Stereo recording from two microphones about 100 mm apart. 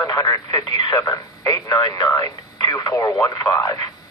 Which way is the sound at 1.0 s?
35° left (ahead or behind).